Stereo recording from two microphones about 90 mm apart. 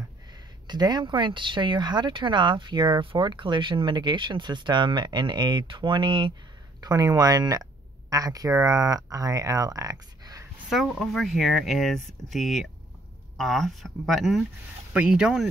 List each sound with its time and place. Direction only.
0.3 s speech: 50° right (ahead or behind)
6.8 s speech: 45° right (ahead or behind)
10.7 s speech: centre (ahead or behind)
14.9 s speech: 10° right (ahead or behind)